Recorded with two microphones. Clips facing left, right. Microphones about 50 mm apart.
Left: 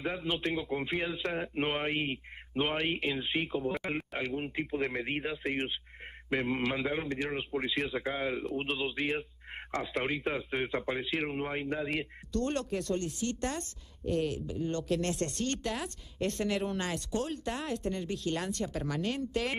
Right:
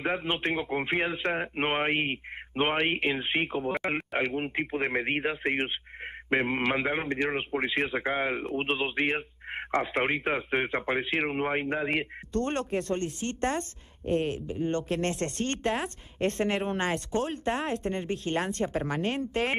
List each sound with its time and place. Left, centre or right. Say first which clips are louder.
0.0 s a man's voice: right 4 dB; right